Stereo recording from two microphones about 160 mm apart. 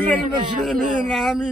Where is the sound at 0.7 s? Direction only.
Centre (ahead or behind).